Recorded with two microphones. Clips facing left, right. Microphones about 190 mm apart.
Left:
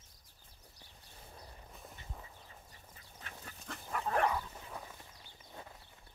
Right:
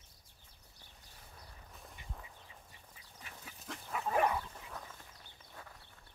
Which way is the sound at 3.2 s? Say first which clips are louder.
Left 2 dB; 5° right (ahead or behind).